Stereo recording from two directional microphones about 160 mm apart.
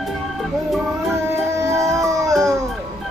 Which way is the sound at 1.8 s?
Centre (ahead or behind).